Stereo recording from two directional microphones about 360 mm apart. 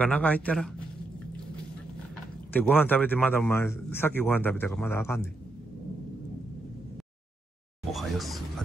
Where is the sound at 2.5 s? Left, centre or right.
Centre.